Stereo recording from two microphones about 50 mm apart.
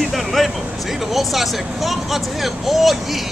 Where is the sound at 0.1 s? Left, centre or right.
Centre.